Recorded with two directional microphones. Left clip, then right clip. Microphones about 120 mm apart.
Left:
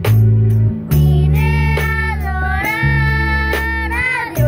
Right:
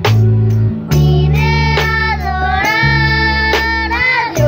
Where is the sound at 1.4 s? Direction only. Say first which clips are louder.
Right 6 dB; 30° right (ahead or behind).